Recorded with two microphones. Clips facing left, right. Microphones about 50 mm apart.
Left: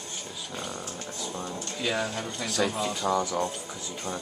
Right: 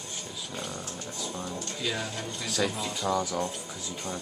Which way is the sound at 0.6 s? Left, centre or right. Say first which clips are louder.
Left 2 dB; centre.